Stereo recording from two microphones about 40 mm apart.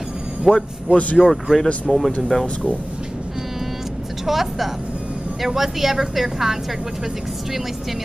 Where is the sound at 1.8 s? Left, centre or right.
Centre.